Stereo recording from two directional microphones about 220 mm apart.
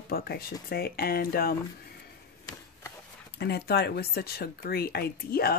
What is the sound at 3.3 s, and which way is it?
Speech, 45° left (ahead or behind).